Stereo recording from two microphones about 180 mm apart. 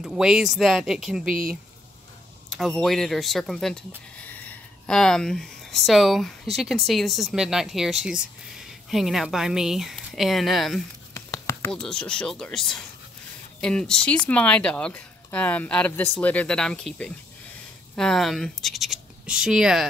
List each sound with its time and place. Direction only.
0.0 s speech: 5° right (ahead or behind)
1.3 s speech: 50° right (ahead or behind)
2.5 s speech: centre (ahead or behind)
4.3 s a sound: 5° left (ahead or behind)
6.5 s speech: centre (ahead or behind)
11.1 s a sound: 15° left (ahead or behind)
11.9 s speech: 5° left (ahead or behind)